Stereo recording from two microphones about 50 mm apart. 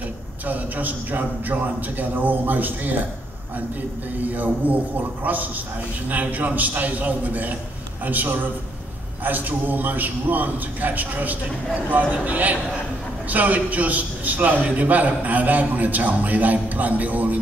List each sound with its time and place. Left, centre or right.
0.5 s a man's voice: right
4.2 s a man's voice: right